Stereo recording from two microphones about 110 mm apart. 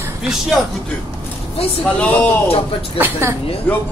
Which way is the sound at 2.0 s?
15° left (ahead or behind).